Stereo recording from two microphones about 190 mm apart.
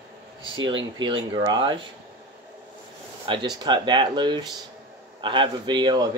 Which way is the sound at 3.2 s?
25° right (ahead or behind).